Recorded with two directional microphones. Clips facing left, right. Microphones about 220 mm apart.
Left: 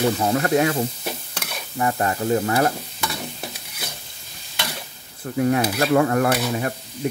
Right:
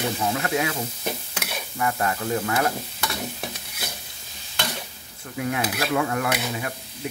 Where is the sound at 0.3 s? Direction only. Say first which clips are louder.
Left 6 dB; 45° left (ahead or behind).